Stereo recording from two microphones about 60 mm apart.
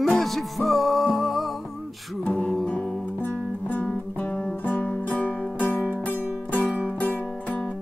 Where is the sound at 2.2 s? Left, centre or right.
Centre.